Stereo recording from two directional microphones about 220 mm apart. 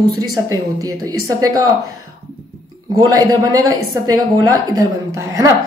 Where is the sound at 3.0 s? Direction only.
15° right (ahead or behind).